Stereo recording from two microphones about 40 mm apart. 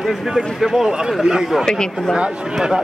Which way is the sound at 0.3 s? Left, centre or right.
Centre.